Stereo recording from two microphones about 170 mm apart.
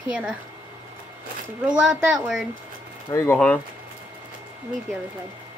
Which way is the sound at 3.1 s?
15° left (ahead or behind).